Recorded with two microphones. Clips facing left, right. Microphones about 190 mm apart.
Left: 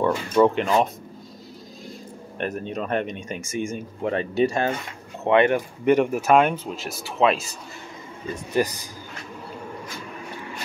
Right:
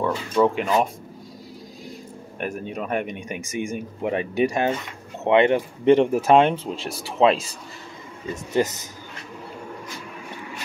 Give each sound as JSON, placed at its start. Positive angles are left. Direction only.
{"t": 0.0, "sound": "speech", "side_deg": -5}
{"t": 2.3, "sound": "speech", "side_deg": -10}
{"t": 8.5, "sound": "speech", "side_deg": -20}